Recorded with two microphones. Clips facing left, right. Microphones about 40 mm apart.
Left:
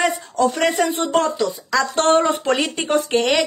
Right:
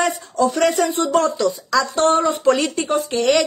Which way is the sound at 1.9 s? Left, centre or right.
Left.